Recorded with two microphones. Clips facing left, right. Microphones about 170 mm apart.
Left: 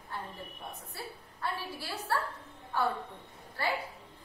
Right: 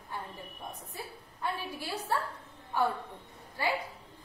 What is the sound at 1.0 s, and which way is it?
A woman's voice, 15° right (ahead or behind).